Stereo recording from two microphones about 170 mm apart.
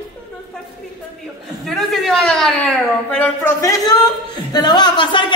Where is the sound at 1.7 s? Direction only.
Centre (ahead or behind).